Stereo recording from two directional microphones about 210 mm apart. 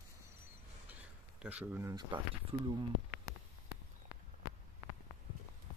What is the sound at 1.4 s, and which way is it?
Speech, 5° right (ahead or behind).